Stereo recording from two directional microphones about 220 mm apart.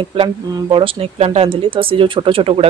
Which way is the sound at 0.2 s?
25° right (ahead or behind).